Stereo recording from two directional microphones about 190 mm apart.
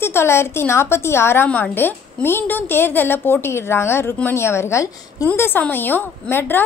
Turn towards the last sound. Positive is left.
turn(degrees=10)  # may be behind; listen again after turning